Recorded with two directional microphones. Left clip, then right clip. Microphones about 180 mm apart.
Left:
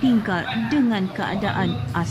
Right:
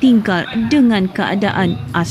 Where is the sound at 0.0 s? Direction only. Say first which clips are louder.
Right 7 dB; 20° right (ahead or behind).